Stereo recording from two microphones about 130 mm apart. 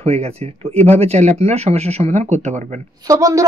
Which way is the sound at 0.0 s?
55° right (ahead or behind).